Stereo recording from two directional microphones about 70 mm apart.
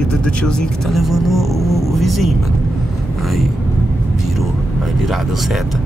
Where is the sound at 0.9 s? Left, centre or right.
Centre.